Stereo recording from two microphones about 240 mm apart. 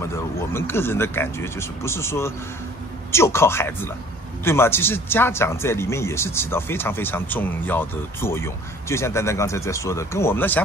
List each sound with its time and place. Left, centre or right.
0.0 s a man's voice: centre